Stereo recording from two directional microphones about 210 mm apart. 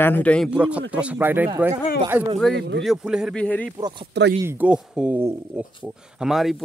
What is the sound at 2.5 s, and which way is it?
Speech, 55° right (ahead or behind).